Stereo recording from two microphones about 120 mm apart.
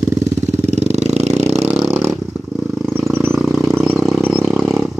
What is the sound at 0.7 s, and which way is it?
Vehicle, 70° right (ahead or behind).